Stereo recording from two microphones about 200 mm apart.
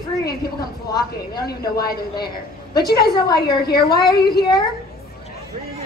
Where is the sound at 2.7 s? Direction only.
50° left (ahead or behind).